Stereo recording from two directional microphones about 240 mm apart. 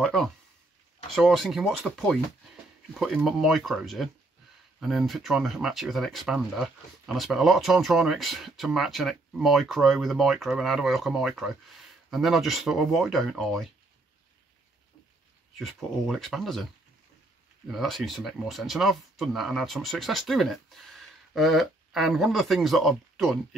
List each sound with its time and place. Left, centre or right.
0.0 s a sound: centre
1.1 s speech: centre
15.5 s speech: centre
17.6 s speech: centre